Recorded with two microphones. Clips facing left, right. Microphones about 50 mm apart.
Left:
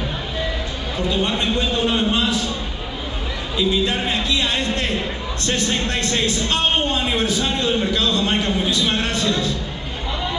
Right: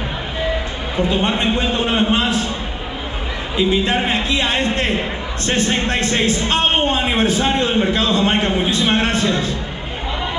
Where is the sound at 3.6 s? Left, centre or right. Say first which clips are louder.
Right 3 dB; right.